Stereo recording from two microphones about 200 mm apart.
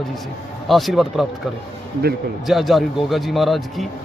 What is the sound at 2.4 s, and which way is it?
A man's voice, centre (ahead or behind).